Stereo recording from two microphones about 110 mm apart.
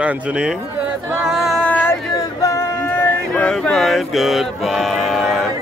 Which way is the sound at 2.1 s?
30° left (ahead or behind).